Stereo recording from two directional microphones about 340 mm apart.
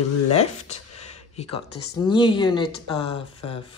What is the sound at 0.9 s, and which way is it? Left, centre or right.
Speech, centre.